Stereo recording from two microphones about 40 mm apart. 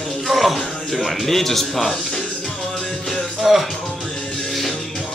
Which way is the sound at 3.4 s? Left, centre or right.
Centre.